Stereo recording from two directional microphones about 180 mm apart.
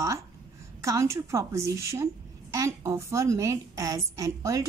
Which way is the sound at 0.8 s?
15° right (ahead or behind).